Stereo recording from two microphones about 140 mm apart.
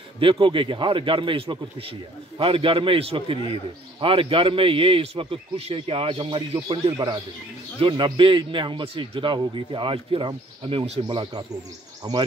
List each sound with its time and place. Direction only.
0.2 s a man's voice: 40° right (ahead or behind)
6.9 s speech: 25° right (ahead or behind)
7.8 s a man's voice: 40° right (ahead or behind)